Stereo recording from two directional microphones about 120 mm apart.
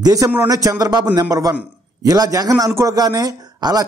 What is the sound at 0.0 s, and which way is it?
A man's voice, 30° right (ahead or behind).